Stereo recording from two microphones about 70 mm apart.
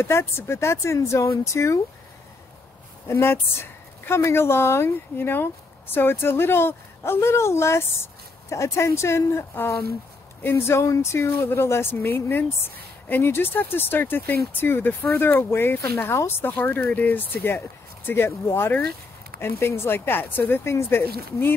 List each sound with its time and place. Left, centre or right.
0.0 s a woman's voice: left
3.1 s a woman's voice: left
16.5 s a woman's voice: left